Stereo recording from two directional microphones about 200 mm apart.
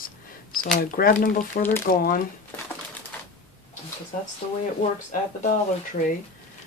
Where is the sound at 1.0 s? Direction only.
50° left (ahead or behind).